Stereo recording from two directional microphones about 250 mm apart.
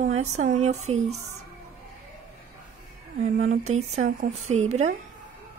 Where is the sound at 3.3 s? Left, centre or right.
Right.